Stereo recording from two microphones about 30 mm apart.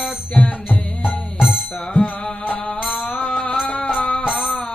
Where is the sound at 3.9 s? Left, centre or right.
Left.